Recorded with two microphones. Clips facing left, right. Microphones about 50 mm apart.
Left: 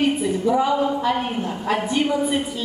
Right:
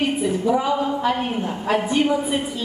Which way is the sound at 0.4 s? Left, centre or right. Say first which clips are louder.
Left 2 dB; centre.